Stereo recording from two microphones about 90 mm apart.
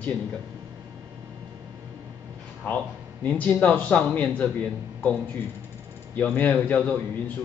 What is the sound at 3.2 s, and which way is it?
A man's voice, 20° left (ahead or behind).